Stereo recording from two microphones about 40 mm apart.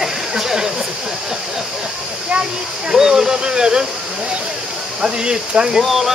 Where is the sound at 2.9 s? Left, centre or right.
Centre.